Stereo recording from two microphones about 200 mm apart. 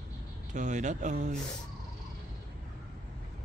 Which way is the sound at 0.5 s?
40° right (ahead or behind).